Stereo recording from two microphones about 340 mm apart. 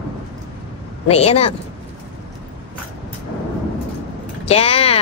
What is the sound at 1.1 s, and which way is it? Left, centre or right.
Speech, centre.